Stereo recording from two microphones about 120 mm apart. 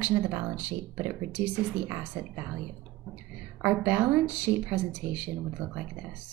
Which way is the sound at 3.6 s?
15° right (ahead or behind).